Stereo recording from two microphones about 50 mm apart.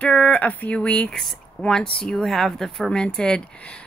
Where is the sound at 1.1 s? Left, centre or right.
Centre.